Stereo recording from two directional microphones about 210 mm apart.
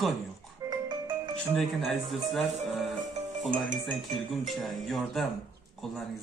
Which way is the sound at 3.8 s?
Centre (ahead or behind).